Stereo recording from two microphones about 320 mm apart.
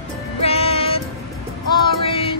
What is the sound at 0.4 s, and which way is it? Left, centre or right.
Music, centre.